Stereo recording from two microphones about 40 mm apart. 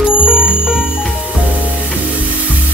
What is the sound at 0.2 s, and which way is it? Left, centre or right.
Music, right.